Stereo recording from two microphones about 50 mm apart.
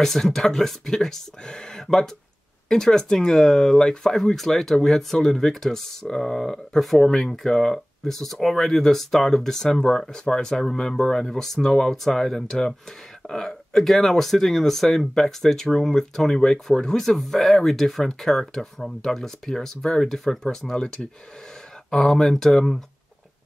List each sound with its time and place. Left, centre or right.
0.0 s speech: centre
17.0 s speech: centre